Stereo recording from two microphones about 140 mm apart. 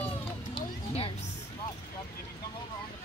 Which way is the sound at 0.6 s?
40° left (ahead or behind).